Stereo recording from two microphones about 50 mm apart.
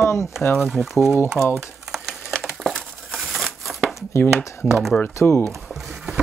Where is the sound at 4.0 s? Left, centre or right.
Left.